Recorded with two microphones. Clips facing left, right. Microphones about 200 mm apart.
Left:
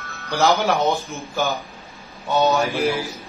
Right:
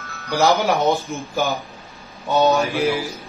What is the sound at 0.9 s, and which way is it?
Speech, centre (ahead or behind).